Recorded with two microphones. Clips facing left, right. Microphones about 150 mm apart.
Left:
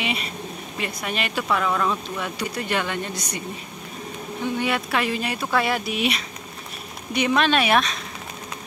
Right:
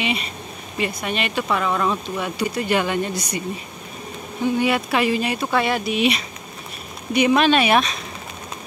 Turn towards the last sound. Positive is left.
turn(degrees=0)  # may be behind; listen again after turning